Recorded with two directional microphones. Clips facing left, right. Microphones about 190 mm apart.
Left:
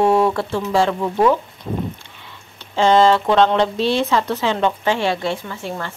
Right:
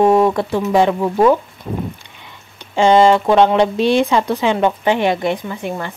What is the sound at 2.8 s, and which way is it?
Speech, 15° right (ahead or behind).